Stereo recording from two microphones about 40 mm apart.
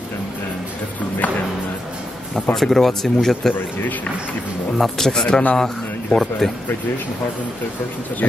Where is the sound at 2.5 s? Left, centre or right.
Centre.